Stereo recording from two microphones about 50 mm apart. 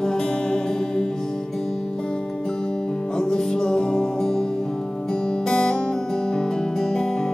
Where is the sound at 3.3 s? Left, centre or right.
Centre.